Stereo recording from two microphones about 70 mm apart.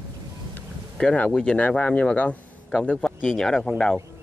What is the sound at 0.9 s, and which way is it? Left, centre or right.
Speech, centre.